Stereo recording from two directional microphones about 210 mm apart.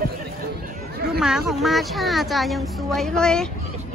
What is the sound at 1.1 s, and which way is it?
A woman's voice, 5° right (ahead or behind).